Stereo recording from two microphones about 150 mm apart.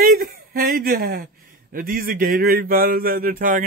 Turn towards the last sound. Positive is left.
turn(degrees=-70)  # may be behind; listen again after turning